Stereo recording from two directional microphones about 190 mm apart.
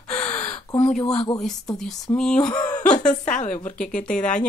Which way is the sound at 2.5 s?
20° left (ahead or behind).